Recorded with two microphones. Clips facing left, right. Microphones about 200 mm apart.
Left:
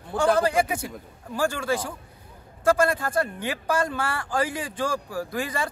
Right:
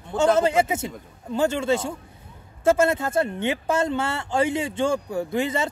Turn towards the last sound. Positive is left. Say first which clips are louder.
# right 5 dB
turn(degrees=-25)  # may be behind; listen again after turning